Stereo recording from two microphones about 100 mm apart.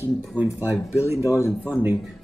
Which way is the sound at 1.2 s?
30° left (ahead or behind).